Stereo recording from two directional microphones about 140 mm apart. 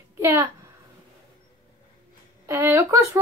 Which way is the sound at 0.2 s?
20° right (ahead or behind).